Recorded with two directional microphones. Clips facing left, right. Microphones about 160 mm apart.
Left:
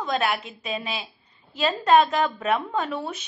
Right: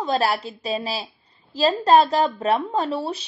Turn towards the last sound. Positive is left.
turn(degrees=-30)  # may be behind; listen again after turning